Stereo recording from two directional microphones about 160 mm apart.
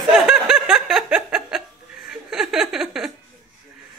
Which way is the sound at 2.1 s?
5° right (ahead or behind).